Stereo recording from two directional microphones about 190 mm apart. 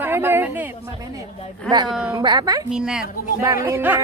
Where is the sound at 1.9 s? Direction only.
5° right (ahead or behind).